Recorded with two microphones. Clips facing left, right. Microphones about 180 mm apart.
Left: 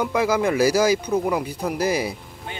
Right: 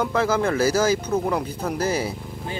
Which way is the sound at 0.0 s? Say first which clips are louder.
Left 1 dB; 10° left (ahead or behind).